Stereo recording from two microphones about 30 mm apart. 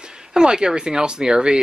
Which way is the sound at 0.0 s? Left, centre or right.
Right.